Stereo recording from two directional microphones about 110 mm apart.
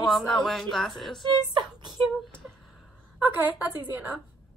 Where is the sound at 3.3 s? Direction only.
15° right (ahead or behind).